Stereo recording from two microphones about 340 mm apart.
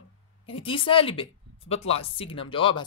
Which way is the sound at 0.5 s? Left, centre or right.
Centre.